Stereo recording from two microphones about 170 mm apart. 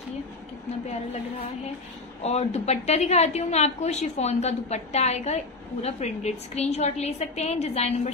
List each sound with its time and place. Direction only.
2.2 s a woman's voice: 40° left (ahead or behind)